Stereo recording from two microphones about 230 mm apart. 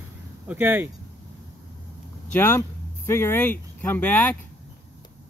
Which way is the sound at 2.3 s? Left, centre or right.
Centre.